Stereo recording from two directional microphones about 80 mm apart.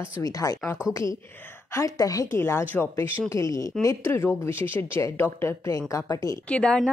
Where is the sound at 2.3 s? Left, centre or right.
Left.